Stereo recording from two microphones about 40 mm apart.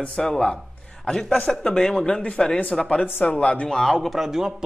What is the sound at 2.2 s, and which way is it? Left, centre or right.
Speech, left.